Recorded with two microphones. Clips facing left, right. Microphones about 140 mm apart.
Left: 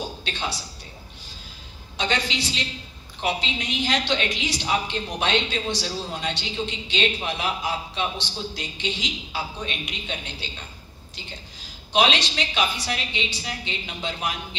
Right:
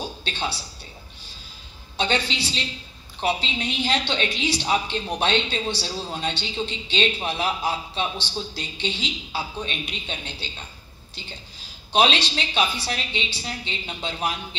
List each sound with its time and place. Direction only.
0.2 s a man's voice: 30° right (ahead or behind)
2.0 s a man's voice: 30° right (ahead or behind)
11.9 s a man's voice: 35° right (ahead or behind)